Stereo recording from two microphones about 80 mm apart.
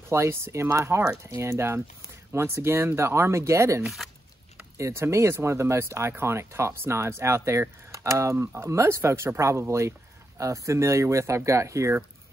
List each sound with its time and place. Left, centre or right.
0.1 s speech: right